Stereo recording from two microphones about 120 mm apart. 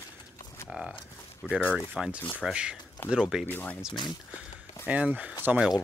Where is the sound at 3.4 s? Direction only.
15° left (ahead or behind).